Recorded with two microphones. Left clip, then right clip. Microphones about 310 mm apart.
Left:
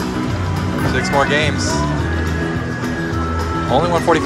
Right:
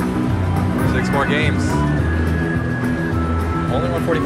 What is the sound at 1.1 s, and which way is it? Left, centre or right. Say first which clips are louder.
Speech: left 4 dB; centre.